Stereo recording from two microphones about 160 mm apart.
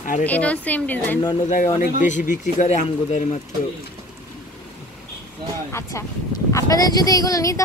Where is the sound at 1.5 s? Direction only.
50° left (ahead or behind).